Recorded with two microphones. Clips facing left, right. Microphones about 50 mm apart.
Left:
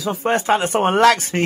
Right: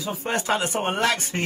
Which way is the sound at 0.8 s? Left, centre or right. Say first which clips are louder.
Left 9 dB; left.